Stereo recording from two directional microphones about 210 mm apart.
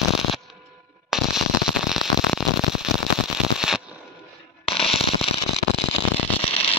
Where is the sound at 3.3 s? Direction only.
Centre (ahead or behind).